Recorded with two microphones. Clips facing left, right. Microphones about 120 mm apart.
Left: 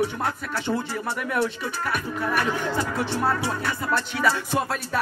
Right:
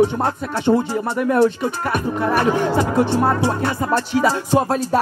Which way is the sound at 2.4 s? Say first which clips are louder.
Right 8 dB; 45° right (ahead or behind).